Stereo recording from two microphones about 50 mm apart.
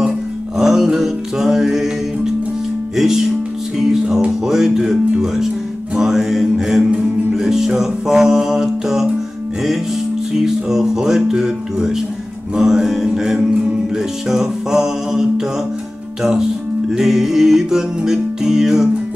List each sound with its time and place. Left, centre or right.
0.6 s music: centre
10.4 s music: centre